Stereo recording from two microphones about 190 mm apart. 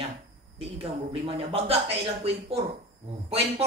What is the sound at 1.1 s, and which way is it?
Speech, 30° right (ahead or behind).